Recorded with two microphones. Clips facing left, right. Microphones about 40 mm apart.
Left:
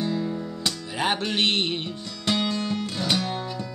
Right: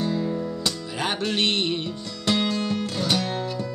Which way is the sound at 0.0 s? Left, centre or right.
Centre.